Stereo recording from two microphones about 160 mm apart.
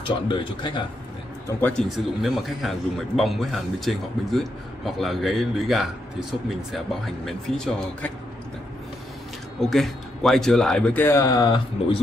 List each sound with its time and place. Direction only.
0.0 s speech: 30° left (ahead or behind)
1.6 s speech: centre (ahead or behind)
9.6 s speech: centre (ahead or behind); by 11.6 s 25° left (ahead or behind)